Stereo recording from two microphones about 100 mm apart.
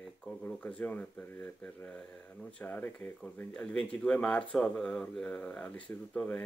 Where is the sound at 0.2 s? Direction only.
10° left (ahead or behind).